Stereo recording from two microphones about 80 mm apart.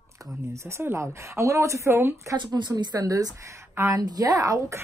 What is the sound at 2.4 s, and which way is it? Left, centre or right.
Speech, right.